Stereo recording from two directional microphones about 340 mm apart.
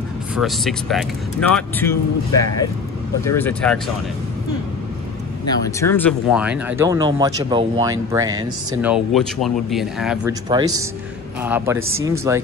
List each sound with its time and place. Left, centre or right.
0.4 s speech: centre
3.3 s speech: centre
5.5 s speech: centre
10.5 s speech: centre